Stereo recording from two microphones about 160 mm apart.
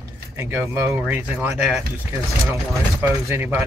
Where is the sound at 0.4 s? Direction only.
15° right (ahead or behind).